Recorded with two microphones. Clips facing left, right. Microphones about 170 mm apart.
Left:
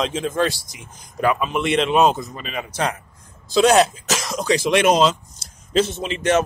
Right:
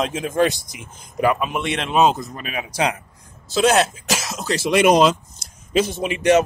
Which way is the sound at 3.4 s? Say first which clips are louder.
Left 2 dB; centre (ahead or behind).